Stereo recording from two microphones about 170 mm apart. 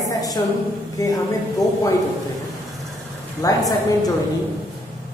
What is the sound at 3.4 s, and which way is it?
Speech, 20° left (ahead or behind).